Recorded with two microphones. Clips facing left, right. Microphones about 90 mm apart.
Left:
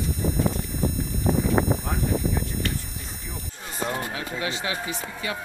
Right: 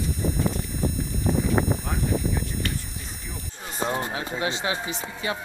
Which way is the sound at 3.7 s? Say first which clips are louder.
Right 2 dB; 25° right (ahead or behind).